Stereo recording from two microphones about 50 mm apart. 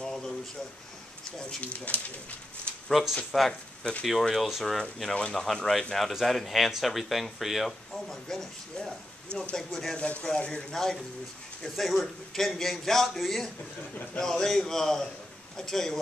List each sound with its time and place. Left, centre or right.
0.0 s a sound: centre
1.6 s speech: left
2.9 s speech: centre
5.3 s speech: centre
8.1 s a man's voice: centre
9.9 s speech: left
10.8 s a man's voice: centre